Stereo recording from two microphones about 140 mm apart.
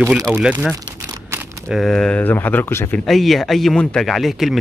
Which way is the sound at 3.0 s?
Centre (ahead or behind).